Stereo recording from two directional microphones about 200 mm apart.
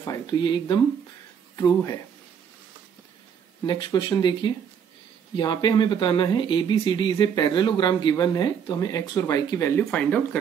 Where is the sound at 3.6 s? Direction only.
20° left (ahead or behind).